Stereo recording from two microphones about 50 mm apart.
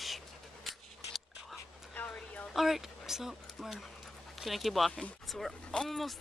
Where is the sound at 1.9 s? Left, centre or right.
Left.